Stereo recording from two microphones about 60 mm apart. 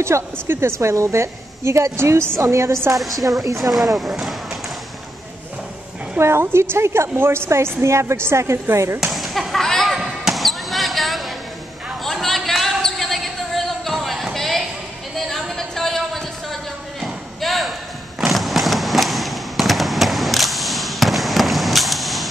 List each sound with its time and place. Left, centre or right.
0.0 s a woman's voice: right
2.9 s speech: centre
6.1 s a woman's voice: right
9.0 s a sound: centre
9.9 s basketball bounce: centre
15.1 s a sound: centre